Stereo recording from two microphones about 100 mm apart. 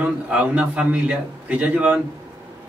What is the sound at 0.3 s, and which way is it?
A man's voice, 15° right (ahead or behind).